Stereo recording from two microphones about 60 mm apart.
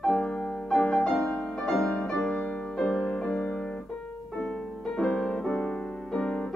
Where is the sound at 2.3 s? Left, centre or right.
Left.